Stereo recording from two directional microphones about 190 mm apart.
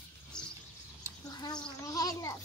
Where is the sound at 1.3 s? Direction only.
20° left (ahead or behind).